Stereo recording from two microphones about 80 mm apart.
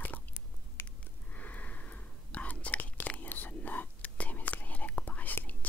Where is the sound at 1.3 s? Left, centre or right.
Centre.